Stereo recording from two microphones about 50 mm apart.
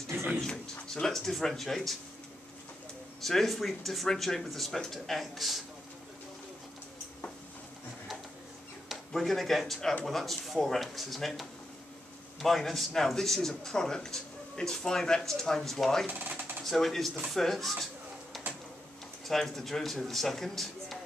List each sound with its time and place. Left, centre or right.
0.8 s a man's voice: centre
3.3 s speech: centre
8.8 s a man's voice: centre
16.1 s sewing machine: right
16.6 s speech: centre
19.2 s speech: centre